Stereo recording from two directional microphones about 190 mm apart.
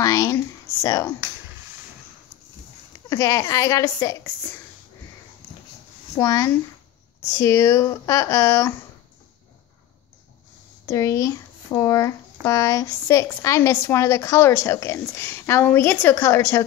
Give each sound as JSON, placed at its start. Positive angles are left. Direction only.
{"t": 0.0, "sound": "a sound", "side_deg": 15}
{"t": 0.8, "sound": "speech", "side_deg": 15}
{"t": 3.1, "sound": "speech", "side_deg": 15}
{"t": 6.1, "sound": "speech", "side_deg": 15}
{"t": 10.9, "sound": "speech", "side_deg": 15}